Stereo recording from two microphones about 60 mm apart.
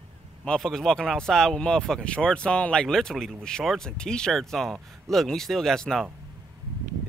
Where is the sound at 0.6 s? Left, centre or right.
Centre.